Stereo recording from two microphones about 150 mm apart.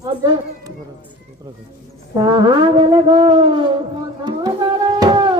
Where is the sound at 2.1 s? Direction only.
30° right (ahead or behind).